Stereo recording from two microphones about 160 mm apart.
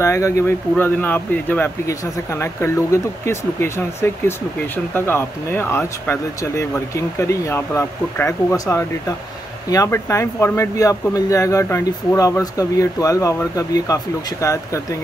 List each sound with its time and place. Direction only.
0.0 s speech: 15° left (ahead or behind)